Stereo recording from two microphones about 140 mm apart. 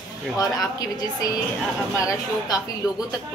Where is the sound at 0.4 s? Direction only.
25° left (ahead or behind).